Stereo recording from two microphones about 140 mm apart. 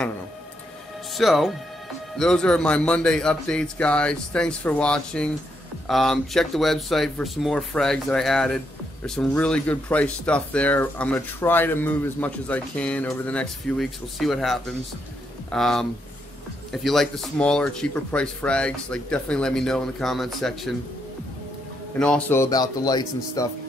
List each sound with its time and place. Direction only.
1.1 s speech: centre (ahead or behind)
21.9 s a man's voice: 5° left (ahead or behind)
22.3 s speech: 25° left (ahead or behind)